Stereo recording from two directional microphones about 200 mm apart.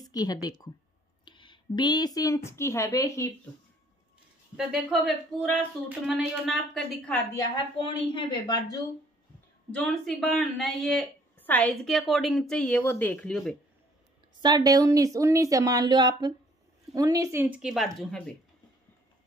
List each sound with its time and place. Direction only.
0.0 s a woman's voice: 20° left (ahead or behind)
4.6 s speech: centre (ahead or behind)
7.3 s a woman's voice: 25° left (ahead or behind)
9.7 s speech: 5° left (ahead or behind)
14.4 s speech: 20° right (ahead or behind); by 18.3 s 5° left (ahead or behind)